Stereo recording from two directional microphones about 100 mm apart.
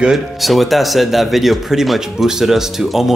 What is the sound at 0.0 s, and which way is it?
Speech, centre (ahead or behind).